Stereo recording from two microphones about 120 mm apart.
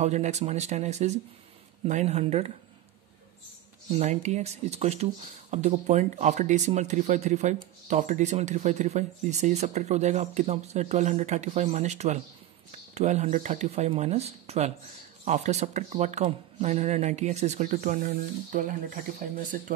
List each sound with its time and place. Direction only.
0.0 s speech: 75° right (ahead or behind)
3.9 s speech: 65° right (ahead or behind)
15.2 s speech: 75° right (ahead or behind); by 18.8 s 90° right